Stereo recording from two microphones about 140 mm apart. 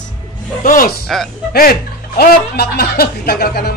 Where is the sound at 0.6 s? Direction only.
80° left.